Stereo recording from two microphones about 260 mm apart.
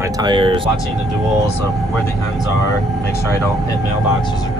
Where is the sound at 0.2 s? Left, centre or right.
Centre.